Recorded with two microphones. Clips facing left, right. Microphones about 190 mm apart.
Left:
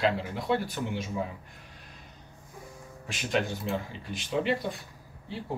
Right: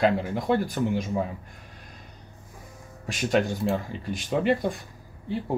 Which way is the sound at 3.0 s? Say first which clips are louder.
Right 6 dB; 45° right (ahead or behind).